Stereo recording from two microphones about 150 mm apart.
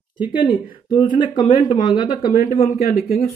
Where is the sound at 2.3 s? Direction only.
60° left (ahead or behind).